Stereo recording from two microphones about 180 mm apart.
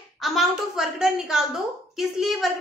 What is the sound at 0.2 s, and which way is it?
A woman's voice, centre (ahead or behind).